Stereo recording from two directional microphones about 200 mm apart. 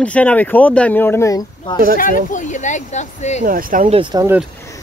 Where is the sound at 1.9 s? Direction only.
40° left (ahead or behind).